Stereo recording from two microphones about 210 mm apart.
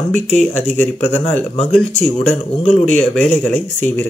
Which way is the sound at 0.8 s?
10° left (ahead or behind).